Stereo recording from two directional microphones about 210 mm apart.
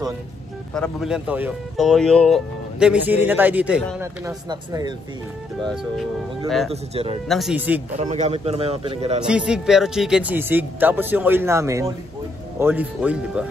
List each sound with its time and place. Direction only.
0.7 s speech: centre (ahead or behind); by 4.9 s 20° right (ahead or behind)
6.7 s speech: 30° right (ahead or behind)
7.2 s speech: centre (ahead or behind)
8.0 s speech: 35° right (ahead or behind)
9.2 s speech: 5° right (ahead or behind)